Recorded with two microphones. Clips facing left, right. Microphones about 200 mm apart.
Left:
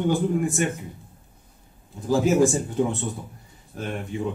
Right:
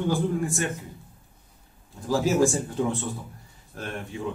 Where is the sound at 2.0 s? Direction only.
20° left (ahead or behind).